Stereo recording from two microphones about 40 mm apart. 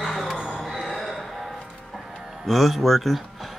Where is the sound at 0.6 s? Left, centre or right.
Centre.